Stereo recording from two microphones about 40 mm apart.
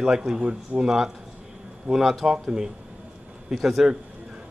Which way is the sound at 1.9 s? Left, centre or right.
Right.